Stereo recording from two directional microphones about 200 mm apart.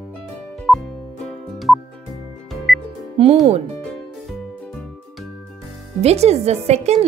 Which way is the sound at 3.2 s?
30° right (ahead or behind).